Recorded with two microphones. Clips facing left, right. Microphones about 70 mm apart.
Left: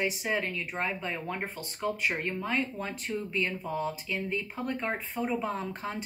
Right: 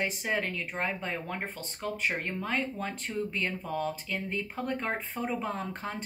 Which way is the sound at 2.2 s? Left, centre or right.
Right.